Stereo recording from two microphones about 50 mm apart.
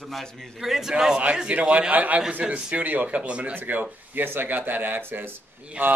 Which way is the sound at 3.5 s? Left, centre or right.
Right.